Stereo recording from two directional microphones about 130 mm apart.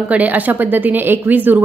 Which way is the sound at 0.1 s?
15° right (ahead or behind).